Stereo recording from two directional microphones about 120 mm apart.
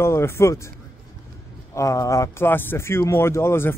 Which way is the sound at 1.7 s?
25° left (ahead or behind).